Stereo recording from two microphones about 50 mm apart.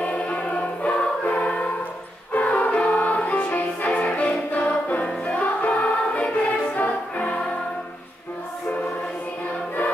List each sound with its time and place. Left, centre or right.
0.0 s choir: left
2.3 s music: left